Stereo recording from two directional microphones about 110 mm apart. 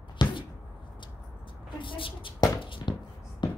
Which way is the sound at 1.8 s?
50° left (ahead or behind).